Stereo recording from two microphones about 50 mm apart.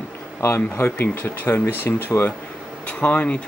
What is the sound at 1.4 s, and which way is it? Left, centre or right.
Speech, left.